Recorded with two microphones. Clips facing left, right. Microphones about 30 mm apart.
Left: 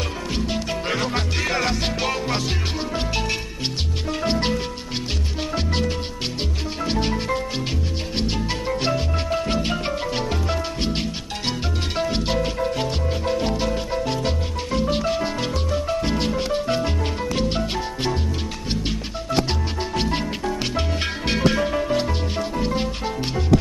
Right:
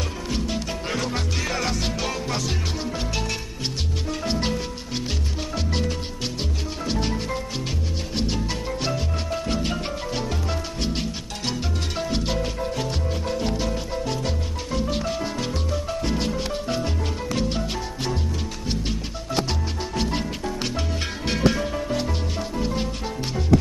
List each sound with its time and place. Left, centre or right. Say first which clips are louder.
0.3 s music: left 2 dB; left
4.1 s music: left 4 dB; left
5.7 s music: left 3 dB; left
20.0 s music: left 2 dB; left